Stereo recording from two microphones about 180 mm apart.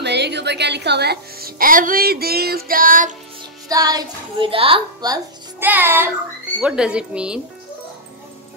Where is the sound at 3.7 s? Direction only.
20° right (ahead or behind).